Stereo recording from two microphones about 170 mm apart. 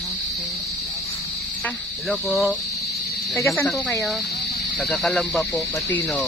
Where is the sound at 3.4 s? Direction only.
15° left (ahead or behind).